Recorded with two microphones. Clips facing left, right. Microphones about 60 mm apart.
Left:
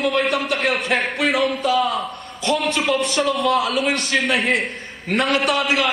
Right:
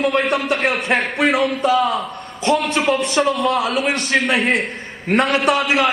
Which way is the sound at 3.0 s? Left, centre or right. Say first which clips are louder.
Right 3 dB; right.